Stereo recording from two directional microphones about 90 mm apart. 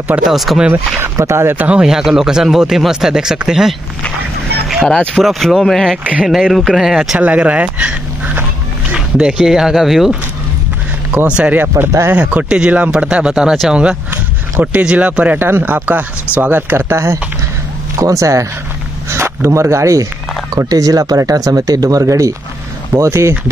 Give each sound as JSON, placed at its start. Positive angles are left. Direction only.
{"t": 0.2, "sound": "speech", "side_deg": 0}
{"t": 0.9, "sound": "speech", "side_deg": -30}
{"t": 1.7, "sound": "speech", "side_deg": -10}
{"t": 4.8, "sound": "speech", "side_deg": 10}
{"t": 7.2, "sound": "speech", "side_deg": -15}
{"t": 8.9, "sound": "speech", "side_deg": -10}
{"t": 11.1, "sound": "speech", "side_deg": -15}